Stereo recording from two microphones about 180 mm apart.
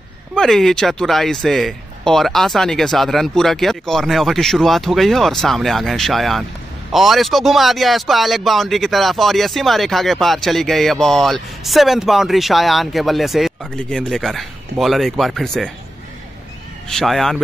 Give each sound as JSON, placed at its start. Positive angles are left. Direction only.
{"t": 0.3, "sound": "speech", "side_deg": 5}
{"t": 16.9, "sound": "speech", "side_deg": 0}